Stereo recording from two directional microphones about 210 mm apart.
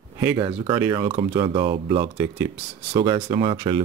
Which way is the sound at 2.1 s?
15° right (ahead or behind).